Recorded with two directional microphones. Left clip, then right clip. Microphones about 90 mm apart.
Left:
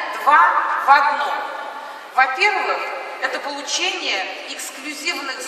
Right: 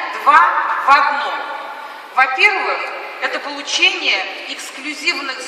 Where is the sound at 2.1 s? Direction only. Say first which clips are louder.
Right 3 dB; 20° left (ahead or behind).